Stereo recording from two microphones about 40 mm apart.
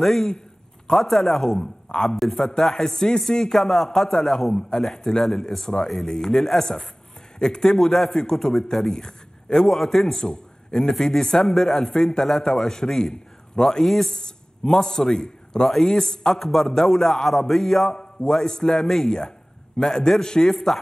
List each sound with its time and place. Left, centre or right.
0.0 s a man's voice: centre
2.0 s a man's voice: centre
14.2 s a man's voice: centre